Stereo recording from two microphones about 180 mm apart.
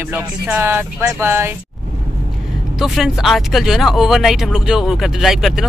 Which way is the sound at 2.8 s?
Centre (ahead or behind).